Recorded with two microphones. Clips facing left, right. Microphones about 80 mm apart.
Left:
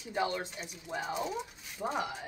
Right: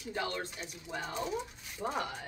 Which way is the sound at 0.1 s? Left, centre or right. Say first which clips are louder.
Left 4 dB; centre.